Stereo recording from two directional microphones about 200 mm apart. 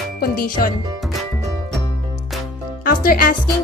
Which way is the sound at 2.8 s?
45° left (ahead or behind).